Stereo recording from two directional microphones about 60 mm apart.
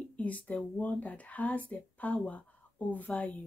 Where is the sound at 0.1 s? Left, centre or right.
Left.